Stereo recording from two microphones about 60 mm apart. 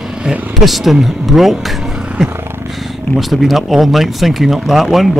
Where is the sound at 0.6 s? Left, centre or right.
Centre.